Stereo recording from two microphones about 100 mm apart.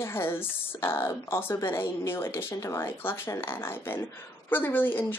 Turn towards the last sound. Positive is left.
turn(degrees=20)  # may be behind; listen again after turning